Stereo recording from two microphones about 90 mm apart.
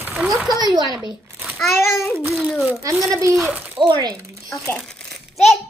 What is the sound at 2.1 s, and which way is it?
Speech, 25° right (ahead or behind).